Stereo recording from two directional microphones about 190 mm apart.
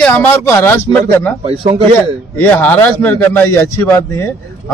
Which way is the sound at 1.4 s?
30° right (ahead or behind).